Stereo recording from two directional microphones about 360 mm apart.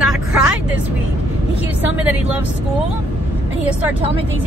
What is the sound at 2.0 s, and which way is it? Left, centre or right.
Speech, centre.